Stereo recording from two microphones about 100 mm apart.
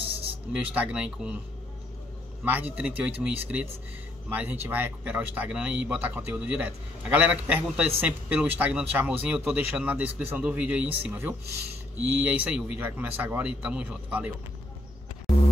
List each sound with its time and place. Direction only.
0.5 s speech: 10° right (ahead or behind)
2.4 s speech: 20° right (ahead or behind)